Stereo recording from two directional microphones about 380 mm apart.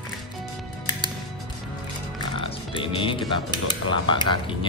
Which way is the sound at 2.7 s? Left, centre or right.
Centre.